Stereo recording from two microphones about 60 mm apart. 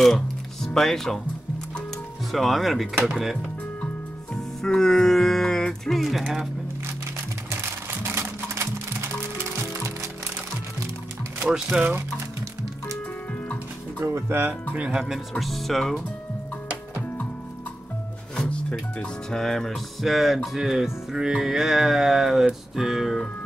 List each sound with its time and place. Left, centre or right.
0.0 s speech: centre
2.3 s speech: centre
4.6 s speech: centre
8.0 s a sound: right
9.6 s music: right
11.4 s music: centre
14.0 s speech: right
14.7 s music: centre
15.1 s speech: centre
18.5 s music: centre
19.3 s speech: centre
20.5 s music: centre